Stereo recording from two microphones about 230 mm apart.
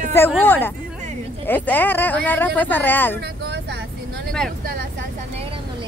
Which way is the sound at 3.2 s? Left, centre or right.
Right.